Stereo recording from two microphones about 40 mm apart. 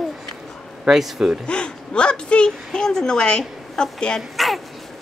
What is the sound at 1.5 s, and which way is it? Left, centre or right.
Speech, left.